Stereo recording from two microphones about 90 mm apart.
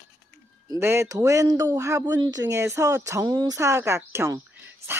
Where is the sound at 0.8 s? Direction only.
30° right (ahead or behind).